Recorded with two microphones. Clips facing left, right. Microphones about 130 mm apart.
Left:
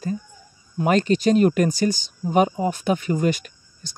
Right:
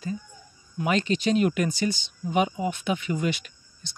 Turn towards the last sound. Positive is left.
turn(degrees=45)  # may be behind; listen again after turning